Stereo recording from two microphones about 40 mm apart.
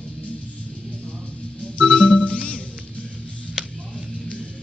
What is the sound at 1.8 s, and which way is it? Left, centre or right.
Music, left.